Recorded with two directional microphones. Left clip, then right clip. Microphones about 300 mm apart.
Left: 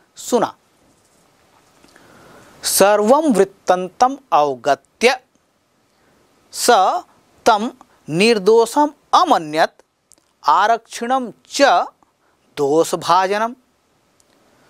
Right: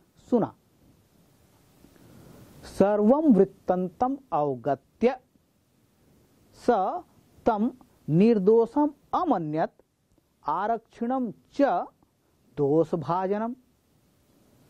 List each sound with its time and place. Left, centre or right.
0.2 s speech: centre
2.0 s biting: centre
2.6 s a woman's voice: centre
6.5 s a woman's voice: centre